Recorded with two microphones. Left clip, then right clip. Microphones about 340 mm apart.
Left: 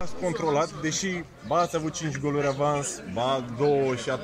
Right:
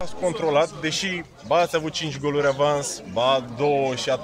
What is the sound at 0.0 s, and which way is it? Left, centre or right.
A man's voice, right.